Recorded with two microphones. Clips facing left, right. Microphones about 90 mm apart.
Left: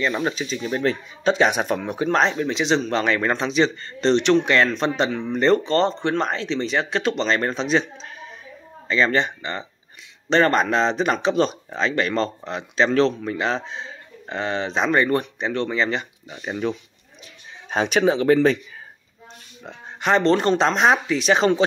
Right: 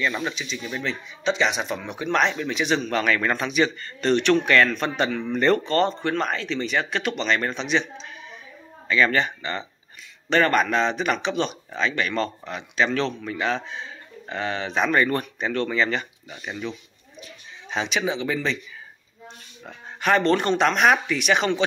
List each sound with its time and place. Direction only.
0.2 s speech: 40° left (ahead or behind); by 16.3 s 20° left (ahead or behind)
16.3 s speech: 35° left (ahead or behind)
17.6 s speech: 50° left (ahead or behind)
19.6 s speech: 20° left (ahead or behind)